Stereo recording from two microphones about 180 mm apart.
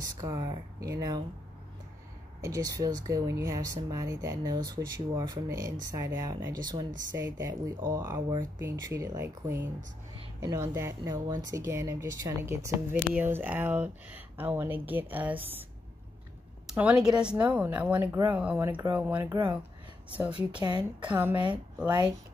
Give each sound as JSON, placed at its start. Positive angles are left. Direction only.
{"t": 0.0, "sound": "speech", "side_deg": -20}
{"t": 2.4, "sound": "speech", "side_deg": -20}
{"t": 16.6, "sound": "a woman's voice", "side_deg": -5}
{"t": 20.6, "sound": "speech", "side_deg": -25}
{"t": 21.1, "sound": "speech", "side_deg": -10}
{"t": 21.8, "sound": "speech", "side_deg": -25}